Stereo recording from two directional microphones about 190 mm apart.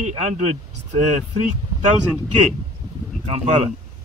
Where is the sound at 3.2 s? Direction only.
35° right (ahead or behind).